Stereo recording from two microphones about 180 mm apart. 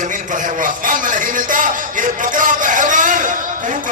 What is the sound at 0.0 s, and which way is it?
Music, 45° right (ahead or behind).